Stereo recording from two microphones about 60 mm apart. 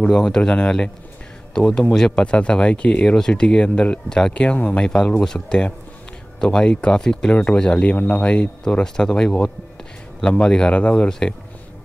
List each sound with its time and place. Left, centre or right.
0.1 s speech: centre